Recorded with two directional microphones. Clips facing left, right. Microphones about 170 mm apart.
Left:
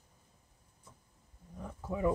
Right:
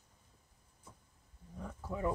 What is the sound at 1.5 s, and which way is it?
Wild animals, 10° left (ahead or behind).